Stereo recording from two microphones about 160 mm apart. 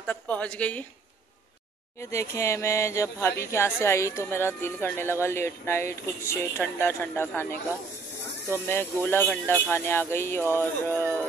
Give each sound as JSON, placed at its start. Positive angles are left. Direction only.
{"t": 0.0, "sound": "a woman's voice", "side_deg": 10}
{"t": 2.0, "sound": "speech", "side_deg": 20}
{"t": 8.5, "sound": "speech", "side_deg": 15}